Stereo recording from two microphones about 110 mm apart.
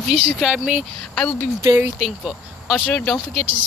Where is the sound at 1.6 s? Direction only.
25° right (ahead or behind).